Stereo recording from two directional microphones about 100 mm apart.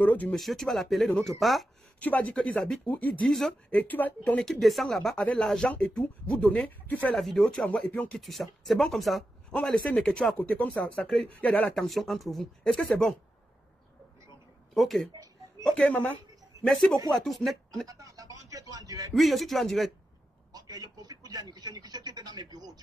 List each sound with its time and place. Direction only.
0.0 s speech: 15° left (ahead or behind)
0.4 s speech: centre (ahead or behind)
2.0 s speech: 15° left (ahead or behind)
3.3 s speech: centre (ahead or behind)
3.7 s speech: 15° left (ahead or behind)
7.2 s speech: centre (ahead or behind)
8.2 s speech: centre (ahead or behind)
10.7 s speech: 5° left (ahead or behind)
14.7 s speech: centre (ahead or behind)
17.8 s a sound: 35° right (ahead or behind)
19.1 s speech: centre (ahead or behind)
20.5 s a sound: 40° right (ahead or behind)